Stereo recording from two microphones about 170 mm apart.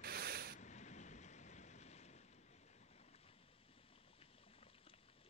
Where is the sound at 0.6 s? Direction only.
45° left (ahead or behind).